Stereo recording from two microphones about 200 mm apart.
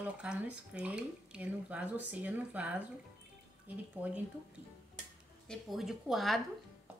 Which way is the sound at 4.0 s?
10° right (ahead or behind).